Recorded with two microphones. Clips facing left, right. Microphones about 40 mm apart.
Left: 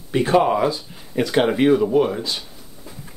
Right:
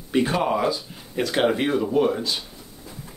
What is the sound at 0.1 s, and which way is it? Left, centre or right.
Speech, centre.